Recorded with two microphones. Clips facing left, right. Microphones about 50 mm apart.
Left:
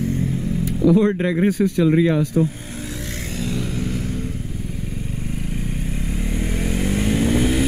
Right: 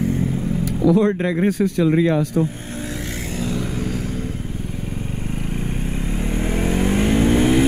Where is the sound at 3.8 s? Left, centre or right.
Right.